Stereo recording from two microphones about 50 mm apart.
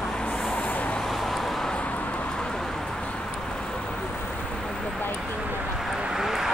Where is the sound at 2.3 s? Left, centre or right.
Centre.